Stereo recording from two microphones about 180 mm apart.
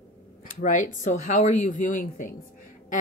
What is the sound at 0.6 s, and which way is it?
Speech, 45° left (ahead or behind).